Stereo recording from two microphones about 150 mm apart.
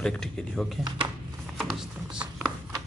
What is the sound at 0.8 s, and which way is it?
Speech, 30° right (ahead or behind).